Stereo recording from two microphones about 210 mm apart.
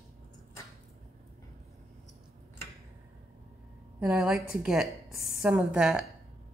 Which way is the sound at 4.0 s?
5° right (ahead or behind).